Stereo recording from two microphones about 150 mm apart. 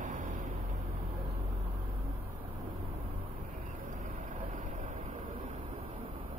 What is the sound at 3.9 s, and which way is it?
Vehicle, 60° right (ahead or behind).